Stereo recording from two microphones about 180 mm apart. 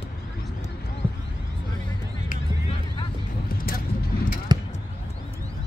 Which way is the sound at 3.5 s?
55° left (ahead or behind).